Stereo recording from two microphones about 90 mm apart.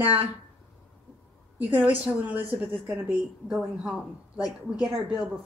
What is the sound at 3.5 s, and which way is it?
Speech, centre (ahead or behind).